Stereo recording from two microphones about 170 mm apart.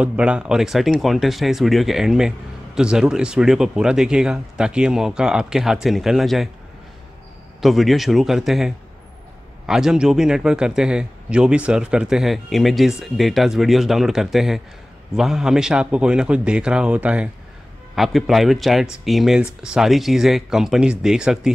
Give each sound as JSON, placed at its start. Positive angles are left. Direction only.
{"t": 0.0, "sound": "speech", "side_deg": -5}
{"t": 7.6, "sound": "speech", "side_deg": 0}